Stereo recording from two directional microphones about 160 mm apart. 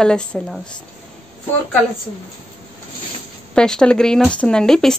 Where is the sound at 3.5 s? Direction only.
5° left (ahead or behind).